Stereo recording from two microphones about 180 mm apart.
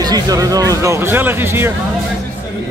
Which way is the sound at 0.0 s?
20° right (ahead or behind).